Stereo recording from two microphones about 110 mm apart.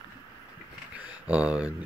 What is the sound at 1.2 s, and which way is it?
Speech, 10° right (ahead or behind).